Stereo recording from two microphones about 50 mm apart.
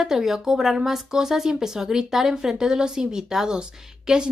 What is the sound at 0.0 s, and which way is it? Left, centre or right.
A woman's voice, centre.